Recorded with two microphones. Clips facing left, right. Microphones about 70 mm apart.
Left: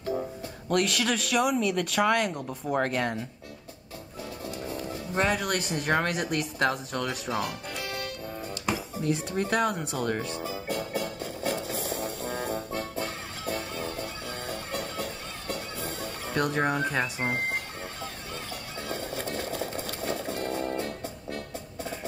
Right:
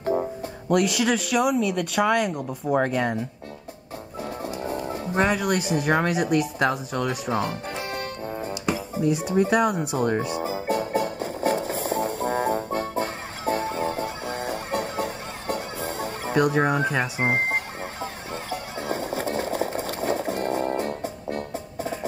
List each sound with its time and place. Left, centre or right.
0.0 s music: right
0.7 s speech: centre
4.6 s music: right
5.2 s speech: centre
7.2 s music: right
9.2 s speech: centre
10.4 s music: right
17.2 s speech: right
18.3 s music: right